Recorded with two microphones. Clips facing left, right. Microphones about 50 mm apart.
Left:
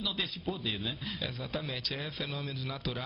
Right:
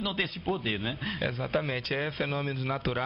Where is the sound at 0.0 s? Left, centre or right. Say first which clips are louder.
Right 4 dB; right.